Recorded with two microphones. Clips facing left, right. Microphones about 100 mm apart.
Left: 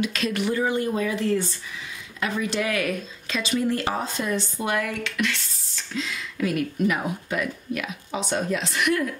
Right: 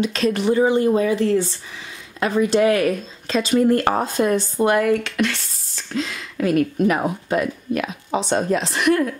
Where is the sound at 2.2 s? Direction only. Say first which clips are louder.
Right 9 dB; 35° right (ahead or behind).